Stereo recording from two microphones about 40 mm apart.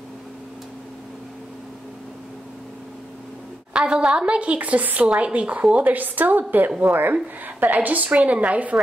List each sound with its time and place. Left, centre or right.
3.7 s a woman's voice: right
5.0 s a woman's voice: right
5.9 s a woman's voice: right